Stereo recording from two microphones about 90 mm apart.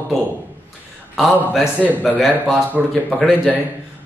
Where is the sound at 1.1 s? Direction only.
Centre (ahead or behind).